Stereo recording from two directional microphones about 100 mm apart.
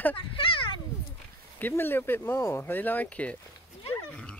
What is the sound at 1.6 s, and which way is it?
Speech, 20° left (ahead or behind).